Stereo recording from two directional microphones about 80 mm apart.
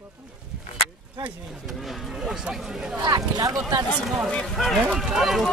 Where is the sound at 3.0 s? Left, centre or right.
Right.